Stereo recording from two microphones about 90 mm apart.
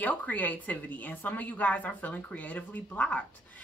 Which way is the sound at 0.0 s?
20° left (ahead or behind).